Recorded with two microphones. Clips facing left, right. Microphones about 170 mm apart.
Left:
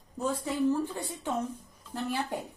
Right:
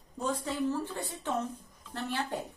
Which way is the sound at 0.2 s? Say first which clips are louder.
Left 3 dB; 10° left (ahead or behind).